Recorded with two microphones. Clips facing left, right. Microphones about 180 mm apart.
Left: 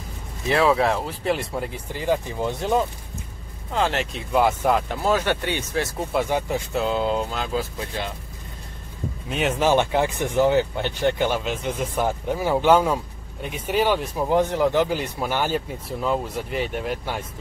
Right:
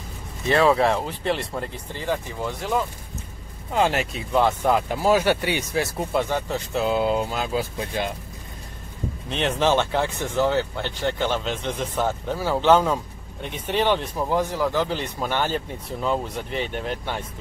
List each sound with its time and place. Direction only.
0.5 s speech: centre (ahead or behind); by 2.8 s 20° left (ahead or behind)
3.7 s speech: 10° right (ahead or behind)
4.3 s speech: 5° left (ahead or behind)
4.7 s speech: 5° right (ahead or behind)
6.1 s speech: 10° left (ahead or behind)
6.7 s speech: 5° right (ahead or behind)
9.3 s speech: 5° left (ahead or behind)
14.3 s speech: 20° left (ahead or behind)
14.9 s speech: 10° left (ahead or behind)